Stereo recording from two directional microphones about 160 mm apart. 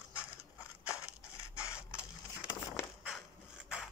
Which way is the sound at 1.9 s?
15° left (ahead or behind).